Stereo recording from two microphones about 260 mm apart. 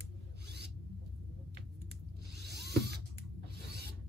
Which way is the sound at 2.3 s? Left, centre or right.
Right.